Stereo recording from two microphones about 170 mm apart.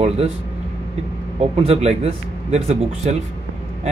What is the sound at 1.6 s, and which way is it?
Speech, 40° right (ahead or behind).